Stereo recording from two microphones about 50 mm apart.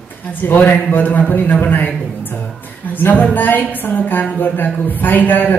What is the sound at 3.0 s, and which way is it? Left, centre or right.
Speech, left.